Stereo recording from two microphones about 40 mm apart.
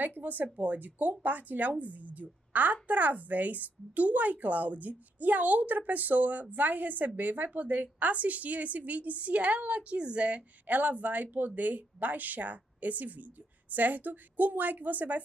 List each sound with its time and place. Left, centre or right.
0.0 s a woman's voice: right